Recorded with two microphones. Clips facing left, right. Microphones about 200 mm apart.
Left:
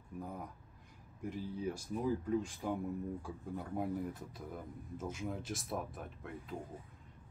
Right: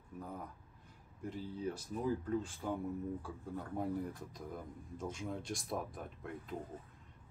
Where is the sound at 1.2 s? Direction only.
10° left (ahead or behind).